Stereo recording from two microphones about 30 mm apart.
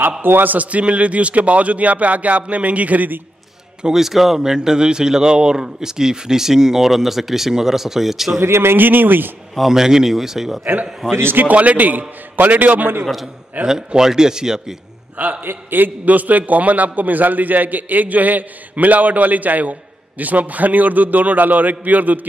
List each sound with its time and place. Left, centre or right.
0.4 s a man's voice: right
0.7 s a man's voice: right
3.9 s speech: centre
4.4 s a man's voice: centre
8.7 s a man's voice: right
9.7 s speech: centre
10.6 s a man's voice: right
11.1 s a man's voice: right
11.5 s a man's voice: right
13.0 s a man's voice: centre
13.7 s a man's voice: centre
15.2 s a man's voice: right
15.7 s a man's voice: right